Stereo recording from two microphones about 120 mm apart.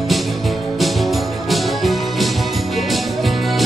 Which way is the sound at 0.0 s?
Centre (ahead or behind).